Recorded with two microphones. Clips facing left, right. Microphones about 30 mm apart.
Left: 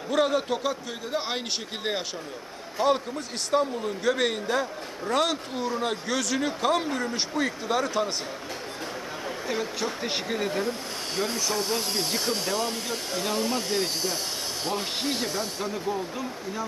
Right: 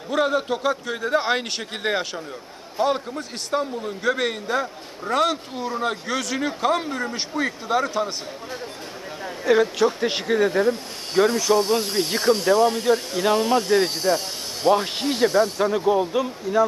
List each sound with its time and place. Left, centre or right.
0.1 s a man's voice: centre
9.5 s speech: right
9.8 s speech: right
11.2 s speech: right
12.9 s speech: right
13.2 s speech: right
15.3 s speech: right